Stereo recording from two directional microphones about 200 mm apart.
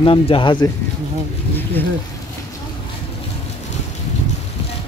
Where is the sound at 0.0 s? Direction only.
25° left (ahead or behind).